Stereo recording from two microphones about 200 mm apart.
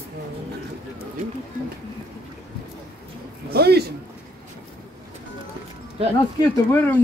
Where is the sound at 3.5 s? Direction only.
55° right (ahead or behind).